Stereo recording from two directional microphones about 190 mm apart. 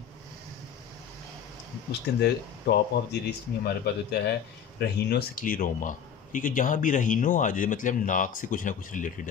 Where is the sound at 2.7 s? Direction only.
60° left (ahead or behind).